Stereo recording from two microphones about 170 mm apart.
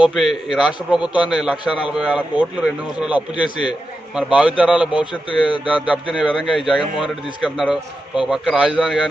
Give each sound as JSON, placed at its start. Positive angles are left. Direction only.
{"t": 0.0, "sound": "a man's voice", "side_deg": 0}